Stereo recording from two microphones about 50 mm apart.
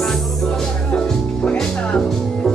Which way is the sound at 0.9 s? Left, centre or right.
Centre.